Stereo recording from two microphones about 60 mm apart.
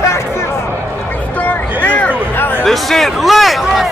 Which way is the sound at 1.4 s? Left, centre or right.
Left.